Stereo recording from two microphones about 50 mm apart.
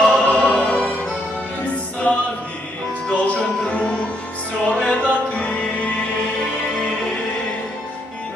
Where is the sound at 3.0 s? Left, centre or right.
Left.